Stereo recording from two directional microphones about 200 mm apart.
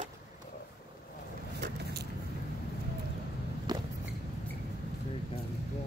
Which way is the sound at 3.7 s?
20° right (ahead or behind).